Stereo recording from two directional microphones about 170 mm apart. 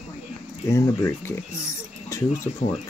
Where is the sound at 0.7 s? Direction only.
15° left (ahead or behind).